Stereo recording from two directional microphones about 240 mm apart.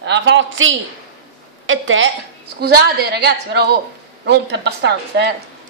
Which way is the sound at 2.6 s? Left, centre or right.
Right.